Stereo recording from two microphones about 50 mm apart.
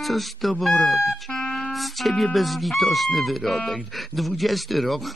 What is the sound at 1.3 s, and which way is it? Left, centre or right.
Music, centre.